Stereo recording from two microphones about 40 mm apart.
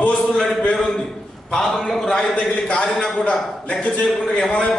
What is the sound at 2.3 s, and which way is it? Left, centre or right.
A man's voice, left.